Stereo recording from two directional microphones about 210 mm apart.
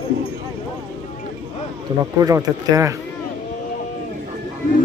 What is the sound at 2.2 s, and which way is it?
Speech, 15° right (ahead or behind).